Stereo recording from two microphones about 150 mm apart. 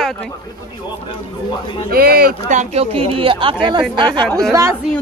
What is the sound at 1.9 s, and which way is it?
Speech, 90° right.